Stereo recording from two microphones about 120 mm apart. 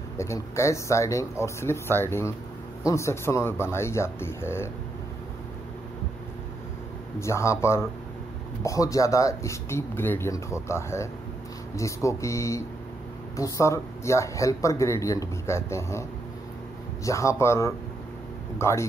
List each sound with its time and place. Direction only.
0.2 s speech: 25° left (ahead or behind)
7.2 s speech: 25° left (ahead or behind)